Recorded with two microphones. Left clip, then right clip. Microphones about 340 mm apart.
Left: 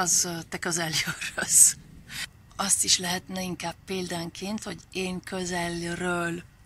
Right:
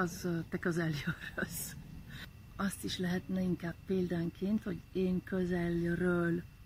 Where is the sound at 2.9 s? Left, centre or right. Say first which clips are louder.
Left 12 dB; left.